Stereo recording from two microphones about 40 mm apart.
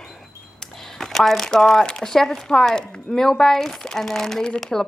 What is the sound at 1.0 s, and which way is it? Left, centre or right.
Speech, centre.